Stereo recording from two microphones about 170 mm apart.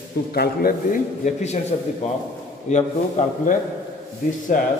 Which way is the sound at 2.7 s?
45° left (ahead or behind).